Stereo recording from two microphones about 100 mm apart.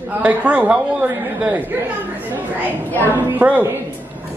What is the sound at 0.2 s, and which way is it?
A man's voice, 15° right (ahead or behind).